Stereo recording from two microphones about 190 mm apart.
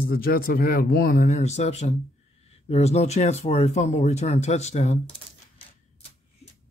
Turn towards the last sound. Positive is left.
turn(degrees=35)  # may be behind; listen again after turning